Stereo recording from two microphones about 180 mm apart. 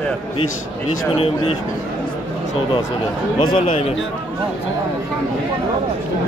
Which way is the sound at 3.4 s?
25° left (ahead or behind).